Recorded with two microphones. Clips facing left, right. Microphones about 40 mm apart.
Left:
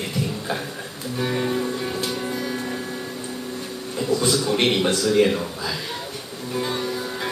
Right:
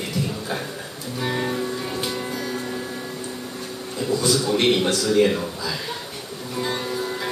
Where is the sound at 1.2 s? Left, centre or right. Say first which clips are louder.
Left 1 dB; centre.